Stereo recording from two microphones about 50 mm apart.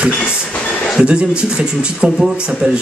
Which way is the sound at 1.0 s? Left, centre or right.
Centre.